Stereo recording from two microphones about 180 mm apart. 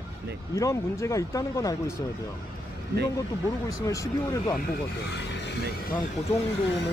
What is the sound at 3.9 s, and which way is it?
Speech, 20° left (ahead or behind).